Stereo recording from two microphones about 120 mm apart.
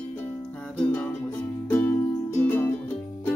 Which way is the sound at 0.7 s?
10° left (ahead or behind).